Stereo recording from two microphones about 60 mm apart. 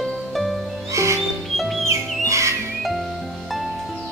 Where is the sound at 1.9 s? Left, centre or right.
Right.